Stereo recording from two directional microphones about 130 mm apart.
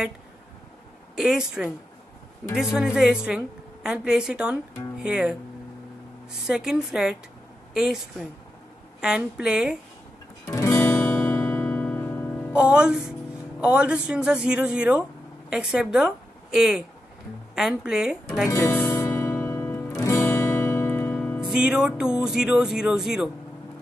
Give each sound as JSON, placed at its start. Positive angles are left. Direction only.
{"t": 1.1, "sound": "a woman's voice", "side_deg": -5}
{"t": 6.4, "sound": "a woman's voice", "side_deg": -5}
{"t": 10.4, "sound": "guitar", "side_deg": 25}
{"t": 12.5, "sound": "a woman's voice", "side_deg": -5}
{"t": 18.5, "sound": "music", "side_deg": 20}
{"t": 21.4, "sound": "a woman's voice", "side_deg": -5}